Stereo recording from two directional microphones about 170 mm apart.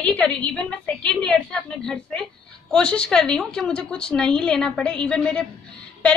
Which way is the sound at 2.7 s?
5° left (ahead or behind).